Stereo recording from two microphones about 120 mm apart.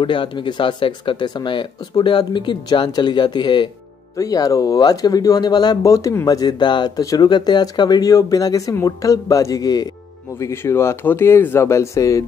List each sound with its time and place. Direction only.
0.0 s speech: 45° left (ahead or behind)
10.4 s speech: 20° left (ahead or behind)